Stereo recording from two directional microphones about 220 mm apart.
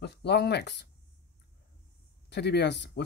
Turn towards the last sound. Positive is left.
turn(degrees=50)  # may be behind; listen again after turning